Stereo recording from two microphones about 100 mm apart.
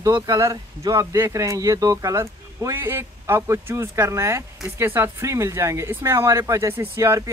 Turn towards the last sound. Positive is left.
turn(degrees=-25)  # may be behind; listen again after turning